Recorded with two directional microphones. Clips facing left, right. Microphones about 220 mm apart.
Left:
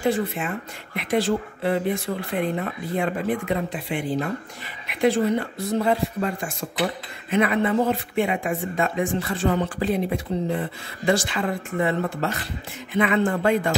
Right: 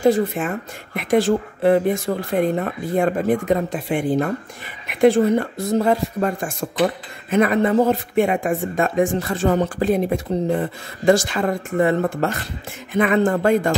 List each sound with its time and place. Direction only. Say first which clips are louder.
0.0 s speech: right 6 dB; 45° right (ahead or behind)